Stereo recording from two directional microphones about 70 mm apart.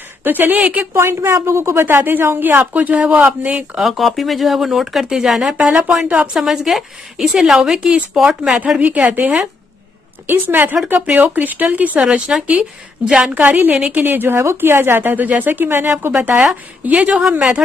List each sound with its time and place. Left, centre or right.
0.2 s speech: right
0.9 s a woman's voice: right
3.7 s speech: centre
5.6 s speech: centre
6.3 s speech: centre
8.5 s speech: centre
10.2 s speech: right
12.0 s speech: centre
13.9 s a woman's voice: right; by 17.6 s centre